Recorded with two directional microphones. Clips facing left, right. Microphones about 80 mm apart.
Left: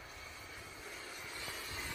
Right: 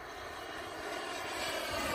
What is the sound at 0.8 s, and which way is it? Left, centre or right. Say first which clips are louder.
Vehicle: right 10 dB; right.